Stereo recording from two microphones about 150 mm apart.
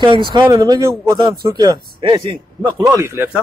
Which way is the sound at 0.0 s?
30° right (ahead or behind).